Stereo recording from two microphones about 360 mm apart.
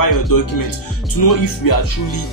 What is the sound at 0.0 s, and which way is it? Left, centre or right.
Speech, left.